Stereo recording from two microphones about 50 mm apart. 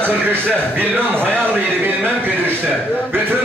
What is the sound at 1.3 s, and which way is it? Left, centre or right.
Speech, right.